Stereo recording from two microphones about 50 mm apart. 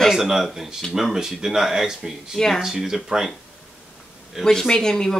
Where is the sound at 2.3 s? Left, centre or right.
Centre.